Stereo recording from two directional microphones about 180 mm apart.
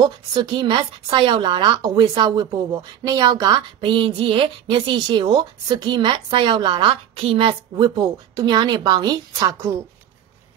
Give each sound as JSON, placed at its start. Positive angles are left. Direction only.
{"t": 0.0, "sound": "speech", "side_deg": -25}